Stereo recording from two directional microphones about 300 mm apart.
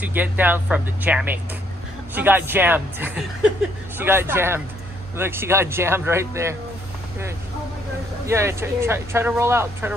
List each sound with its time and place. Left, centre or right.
0.0 s speech: centre
8.3 s speech: centre